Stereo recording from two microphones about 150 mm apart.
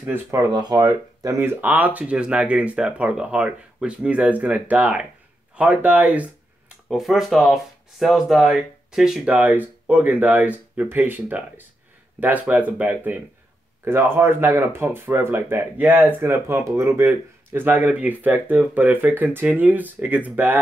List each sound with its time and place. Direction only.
0.0 s speech: 15° right (ahead or behind)